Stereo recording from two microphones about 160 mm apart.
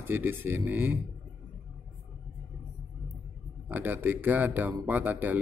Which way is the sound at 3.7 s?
10° right (ahead or behind).